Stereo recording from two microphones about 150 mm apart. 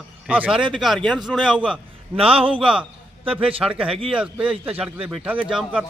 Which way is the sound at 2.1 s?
40° right (ahead or behind).